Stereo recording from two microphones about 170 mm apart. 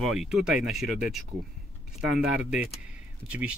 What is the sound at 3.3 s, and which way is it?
Speech, 10° right (ahead or behind).